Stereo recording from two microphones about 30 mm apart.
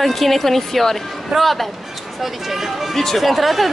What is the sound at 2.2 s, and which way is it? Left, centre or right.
Speech, centre.